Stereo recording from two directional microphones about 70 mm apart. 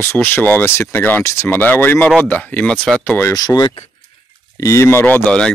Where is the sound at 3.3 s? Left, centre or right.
Left.